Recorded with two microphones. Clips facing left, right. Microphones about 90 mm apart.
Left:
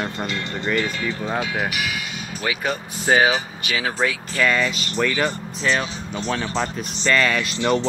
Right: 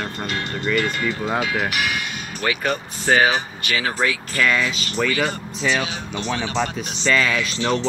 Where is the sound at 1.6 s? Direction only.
60° right (ahead or behind).